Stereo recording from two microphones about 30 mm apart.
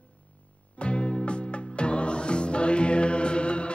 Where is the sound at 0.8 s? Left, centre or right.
Left.